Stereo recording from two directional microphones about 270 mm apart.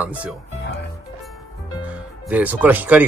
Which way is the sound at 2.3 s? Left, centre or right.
Centre.